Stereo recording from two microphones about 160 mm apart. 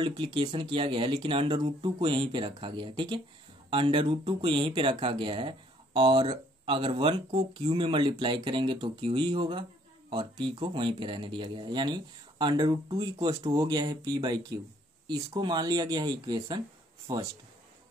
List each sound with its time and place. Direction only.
0.0 s speech: 30° right (ahead or behind)